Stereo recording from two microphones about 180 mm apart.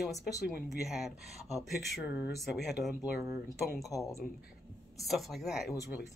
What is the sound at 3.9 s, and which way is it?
Speech, 20° left (ahead or behind).